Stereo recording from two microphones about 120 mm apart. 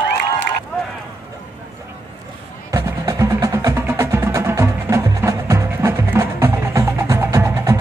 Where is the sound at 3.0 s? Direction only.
25° right (ahead or behind).